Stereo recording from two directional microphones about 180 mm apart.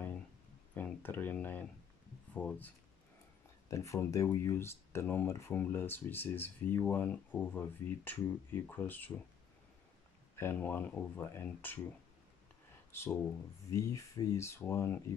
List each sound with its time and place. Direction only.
0.7 s speech: 10° left (ahead or behind)
3.7 s speech: 15° left (ahead or behind)
10.3 s speech: 10° left (ahead or behind)
12.9 s speech: 15° left (ahead or behind)